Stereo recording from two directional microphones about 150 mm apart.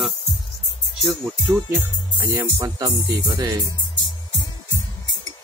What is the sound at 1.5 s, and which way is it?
Music, 15° right (ahead or behind).